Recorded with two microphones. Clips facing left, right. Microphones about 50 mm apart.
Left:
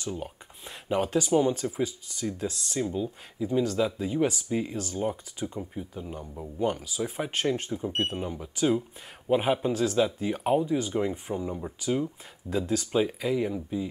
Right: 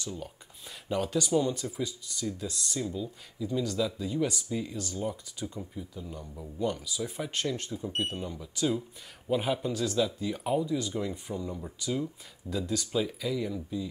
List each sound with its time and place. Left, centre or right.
0.0 s speech: left